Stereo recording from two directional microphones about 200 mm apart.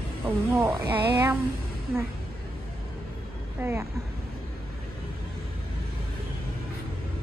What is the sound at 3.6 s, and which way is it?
Speech, 10° right (ahead or behind).